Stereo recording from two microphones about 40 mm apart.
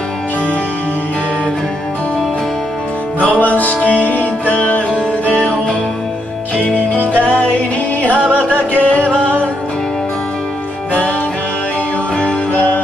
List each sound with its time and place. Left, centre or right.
3.8 s music: right
4.5 s music: left
8.5 s music: right
12.2 s music: left